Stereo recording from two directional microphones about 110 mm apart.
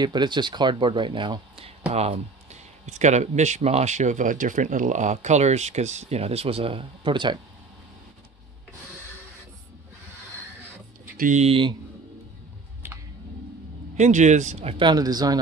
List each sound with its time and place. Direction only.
0.0 s speech: 40° right (ahead or behind)
1.9 s speech: 75° right (ahead or behind); by 7.3 s 45° right (ahead or behind)
11.3 s speech: 65° right (ahead or behind)
13.9 s speech: 90° right
14.8 s speech: 40° right (ahead or behind)